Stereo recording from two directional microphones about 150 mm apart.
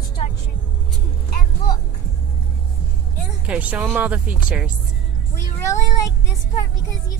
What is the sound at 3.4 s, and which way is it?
Speech, 10° right (ahead or behind).